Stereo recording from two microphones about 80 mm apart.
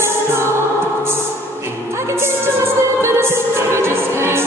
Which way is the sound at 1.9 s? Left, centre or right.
Right.